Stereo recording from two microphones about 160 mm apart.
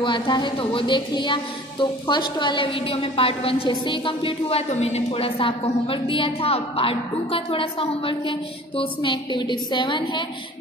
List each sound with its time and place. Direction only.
0.0 s speech: 30° left (ahead or behind)